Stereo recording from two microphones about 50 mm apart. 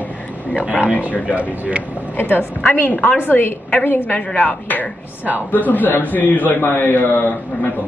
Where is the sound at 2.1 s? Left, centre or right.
Left.